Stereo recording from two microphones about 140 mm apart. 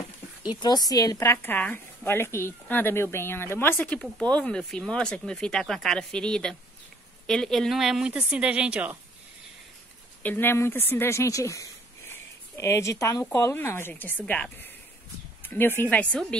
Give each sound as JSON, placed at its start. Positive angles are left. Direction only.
{"t": 0.5, "sound": "speech", "side_deg": 30}
{"t": 10.2, "sound": "speech", "side_deg": 15}
{"t": 12.1, "sound": "a sound", "side_deg": 20}
{"t": 13.2, "sound": "speech", "side_deg": 15}